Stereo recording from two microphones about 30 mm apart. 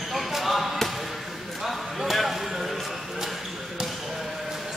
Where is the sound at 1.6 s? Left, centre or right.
Centre.